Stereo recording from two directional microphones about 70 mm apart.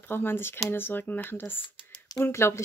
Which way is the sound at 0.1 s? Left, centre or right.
Left.